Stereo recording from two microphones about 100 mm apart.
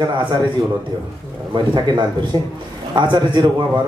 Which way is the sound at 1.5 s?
50° right (ahead or behind).